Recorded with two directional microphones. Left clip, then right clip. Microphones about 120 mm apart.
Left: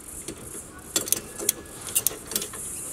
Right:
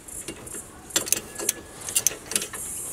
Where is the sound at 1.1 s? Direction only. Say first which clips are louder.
Right 1 dB; 5° left (ahead or behind).